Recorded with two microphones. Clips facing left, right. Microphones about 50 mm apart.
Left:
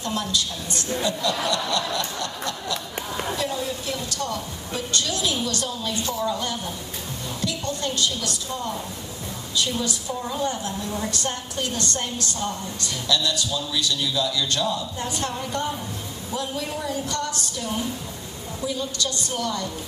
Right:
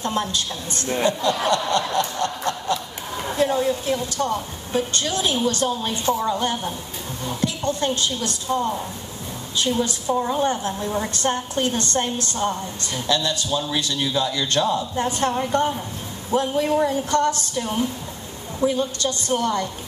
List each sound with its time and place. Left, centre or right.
0.0 s a woman's voice: right
1.0 s snicker: right
3.3 s a woman's voice: right